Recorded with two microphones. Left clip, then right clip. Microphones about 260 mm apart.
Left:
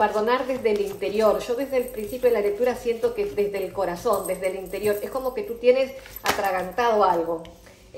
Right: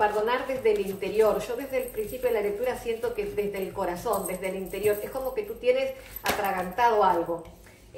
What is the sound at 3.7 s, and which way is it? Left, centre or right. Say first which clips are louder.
A woman's voice: left 5 dB; left.